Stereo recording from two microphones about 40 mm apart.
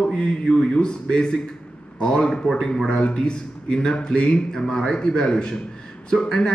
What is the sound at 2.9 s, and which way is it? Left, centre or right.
A man's voice, left.